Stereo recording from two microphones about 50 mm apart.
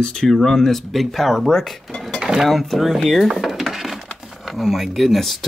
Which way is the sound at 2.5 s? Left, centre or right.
Centre.